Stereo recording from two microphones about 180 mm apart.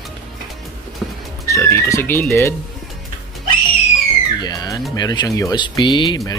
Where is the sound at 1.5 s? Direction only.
15° left (ahead or behind).